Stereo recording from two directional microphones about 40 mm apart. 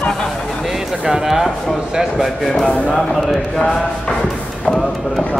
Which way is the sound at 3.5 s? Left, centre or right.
Centre.